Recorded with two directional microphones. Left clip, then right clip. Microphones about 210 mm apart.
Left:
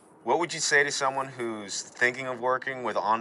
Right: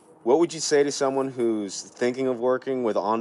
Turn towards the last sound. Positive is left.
turn(degrees=-35)  # may be behind; listen again after turning